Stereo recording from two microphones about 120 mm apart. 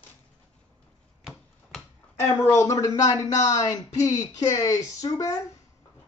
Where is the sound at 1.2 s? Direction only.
Centre (ahead or behind).